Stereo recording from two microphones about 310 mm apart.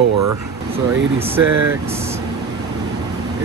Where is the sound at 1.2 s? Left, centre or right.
Centre.